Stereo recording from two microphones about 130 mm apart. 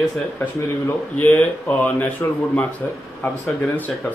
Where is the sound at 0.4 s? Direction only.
10° left (ahead or behind).